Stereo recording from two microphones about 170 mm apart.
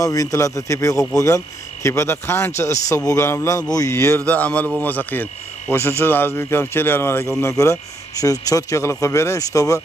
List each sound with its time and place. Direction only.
0.0 s speech: 20° left (ahead or behind)